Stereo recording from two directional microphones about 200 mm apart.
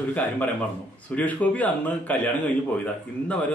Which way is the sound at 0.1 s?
10° left (ahead or behind).